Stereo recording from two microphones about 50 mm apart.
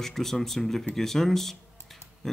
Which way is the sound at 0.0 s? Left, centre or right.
Centre.